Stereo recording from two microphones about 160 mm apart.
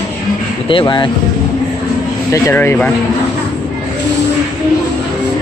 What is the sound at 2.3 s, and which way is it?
Speech, 15° left (ahead or behind).